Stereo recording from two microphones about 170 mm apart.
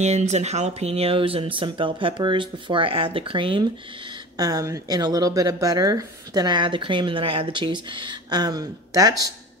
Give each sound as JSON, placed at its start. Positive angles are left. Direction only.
{"t": 0.0, "sound": "speech", "side_deg": -40}